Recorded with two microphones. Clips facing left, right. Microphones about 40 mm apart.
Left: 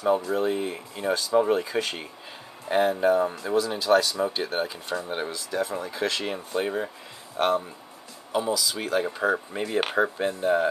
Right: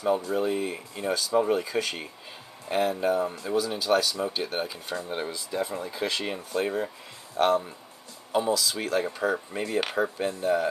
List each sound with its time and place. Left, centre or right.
0.4 s speech: centre
6.3 s speech: centre
8.3 s speech: centre
8.8 s speech: centre
9.8 s speech: left